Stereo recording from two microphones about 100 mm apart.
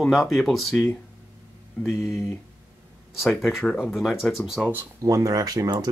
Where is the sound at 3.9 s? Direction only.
Centre (ahead or behind).